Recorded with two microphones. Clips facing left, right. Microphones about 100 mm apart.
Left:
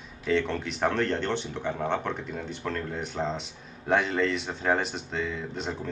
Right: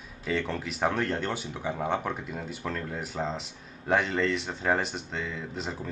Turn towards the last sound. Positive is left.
turn(degrees=0)  # may be behind; listen again after turning